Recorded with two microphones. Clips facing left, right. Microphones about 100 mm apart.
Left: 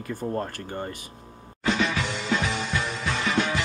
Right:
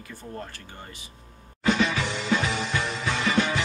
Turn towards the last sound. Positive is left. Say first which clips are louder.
# right 1 dB
turn(degrees=0)  # may be behind; listen again after turning